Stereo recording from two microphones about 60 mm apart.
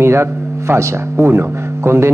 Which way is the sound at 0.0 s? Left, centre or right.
Right.